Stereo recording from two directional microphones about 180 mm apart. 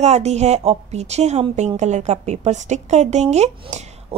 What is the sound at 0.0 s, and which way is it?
A woman's voice, 35° right (ahead or behind).